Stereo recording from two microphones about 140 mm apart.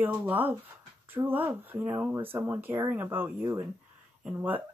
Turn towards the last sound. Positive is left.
turn(degrees=-15)  # may be behind; listen again after turning